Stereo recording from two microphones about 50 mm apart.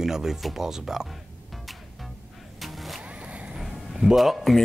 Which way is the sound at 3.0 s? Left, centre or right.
Right.